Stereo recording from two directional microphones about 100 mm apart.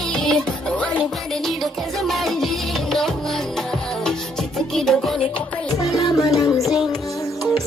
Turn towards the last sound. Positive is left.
turn(degrees=0)  # may be behind; listen again after turning